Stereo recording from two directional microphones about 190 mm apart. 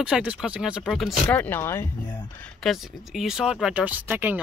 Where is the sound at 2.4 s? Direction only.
Centre (ahead or behind).